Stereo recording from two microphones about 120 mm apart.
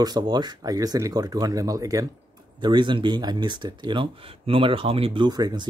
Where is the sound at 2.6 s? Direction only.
40° right (ahead or behind).